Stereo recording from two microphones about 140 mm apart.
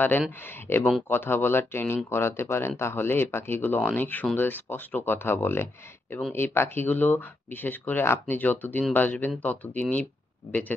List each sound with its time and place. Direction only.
0.7 s speech: 15° left (ahead or behind)